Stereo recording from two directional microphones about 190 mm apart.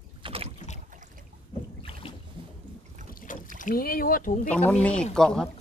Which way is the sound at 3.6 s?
50° left (ahead or behind).